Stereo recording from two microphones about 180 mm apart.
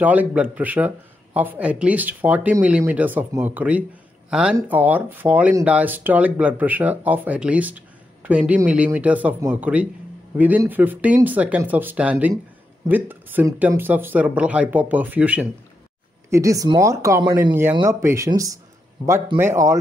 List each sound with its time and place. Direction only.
0.0 s speech: 10° right (ahead or behind)